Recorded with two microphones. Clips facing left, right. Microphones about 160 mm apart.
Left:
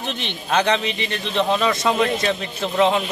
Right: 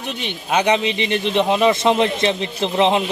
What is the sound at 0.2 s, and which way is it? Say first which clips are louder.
Speech: right 2 dB; 10° right (ahead or behind).